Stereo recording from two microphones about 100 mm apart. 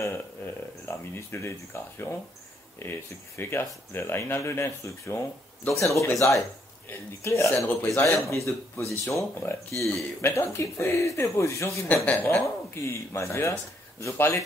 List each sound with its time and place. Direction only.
0.0 s speech: 25° left (ahead or behind)
7.6 s speech: 20° left (ahead or behind)
8.0 s speech: 30° left (ahead or behind)
11.9 s speech: 15° left (ahead or behind)